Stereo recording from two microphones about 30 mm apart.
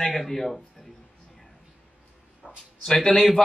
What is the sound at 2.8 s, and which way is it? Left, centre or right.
Speech, centre.